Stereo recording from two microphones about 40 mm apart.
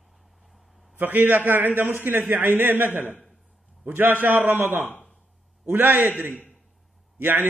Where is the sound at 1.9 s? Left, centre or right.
Right.